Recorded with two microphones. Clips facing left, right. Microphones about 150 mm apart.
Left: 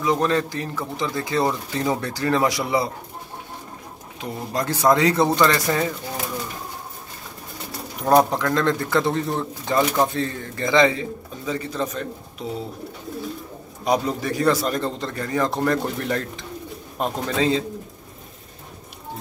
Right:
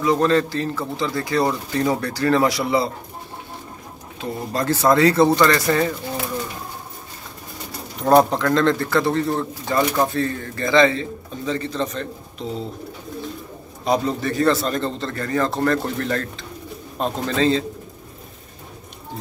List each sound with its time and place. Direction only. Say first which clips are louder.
0.0 s a man's voice: right 3 dB; 15° left (ahead or behind)
4.2 s a man's voice: right 2 dB; 15° left (ahead or behind)
8.0 s a man's voice: right 2 dB; centre (ahead or behind)
13.8 s a man's voice: right 1 dB; 10° left (ahead or behind)
17.0 s a man's voice: right 2 dB; 5° left (ahead or behind)